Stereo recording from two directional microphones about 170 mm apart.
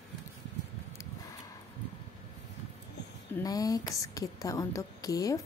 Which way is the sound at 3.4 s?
20° left (ahead or behind).